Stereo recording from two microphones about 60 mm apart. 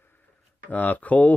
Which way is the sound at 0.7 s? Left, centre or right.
Left.